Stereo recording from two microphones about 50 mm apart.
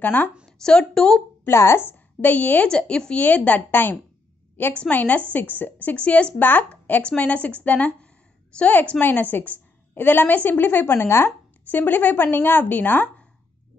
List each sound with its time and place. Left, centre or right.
0.0 s a woman's voice: left
0.5 s a woman's voice: centre
1.5 s speech: left
1.9 s a woman's voice: left
2.7 s speech: centre
3.2 s a woman's voice: left
4.7 s a woman's voice: left
6.3 s a woman's voice: left
6.7 s a woman's voice: left
10.9 s speech: left
11.7 s a woman's voice: left